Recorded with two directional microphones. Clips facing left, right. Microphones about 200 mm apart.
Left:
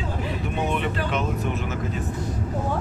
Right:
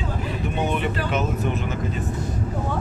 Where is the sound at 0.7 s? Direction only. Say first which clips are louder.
Right 1 dB; centre (ahead or behind).